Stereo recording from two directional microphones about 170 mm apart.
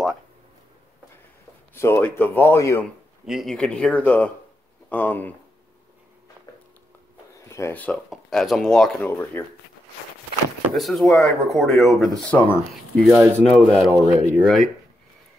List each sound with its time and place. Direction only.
1.7 s speech: 15° left (ahead or behind)
3.3 s speech: centre (ahead or behind)
7.3 s speech: 15° left (ahead or behind)
10.7 s speech: centre (ahead or behind)
13.0 s speech: 15° right (ahead or behind)
13.7 s speech: centre (ahead or behind)
13.9 s speech: 15° right (ahead or behind)